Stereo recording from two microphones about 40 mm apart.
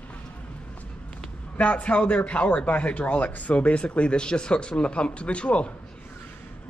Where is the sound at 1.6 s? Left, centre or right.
Left.